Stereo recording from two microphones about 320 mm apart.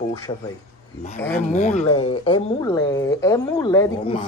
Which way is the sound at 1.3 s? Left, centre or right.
Left.